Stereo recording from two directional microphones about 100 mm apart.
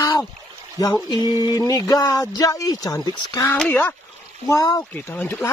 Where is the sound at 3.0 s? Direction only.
45° left (ahead or behind).